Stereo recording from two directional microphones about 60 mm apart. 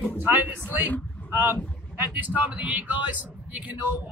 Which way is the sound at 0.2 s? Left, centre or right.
Right.